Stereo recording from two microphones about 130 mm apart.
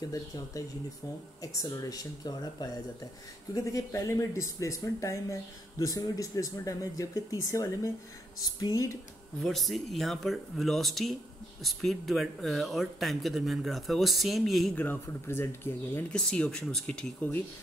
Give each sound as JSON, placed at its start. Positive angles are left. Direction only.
{"t": 0.0, "sound": "speech", "side_deg": 25}
{"t": 9.4, "sound": "speech", "side_deg": 0}
{"t": 14.8, "sound": "speech", "side_deg": 15}